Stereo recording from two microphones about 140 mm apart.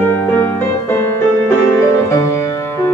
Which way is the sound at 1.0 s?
20° left (ahead or behind).